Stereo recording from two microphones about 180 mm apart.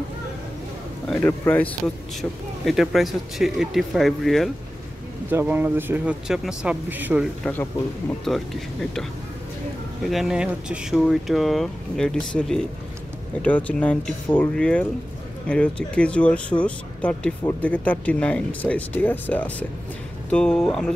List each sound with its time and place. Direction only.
1.0 s speech: 5° left (ahead or behind)
2.6 s speech: centre (ahead or behind)
5.3 s speech: 10° right (ahead or behind)
8.3 s speech: centre (ahead or behind)
10.0 s speech: centre (ahead or behind)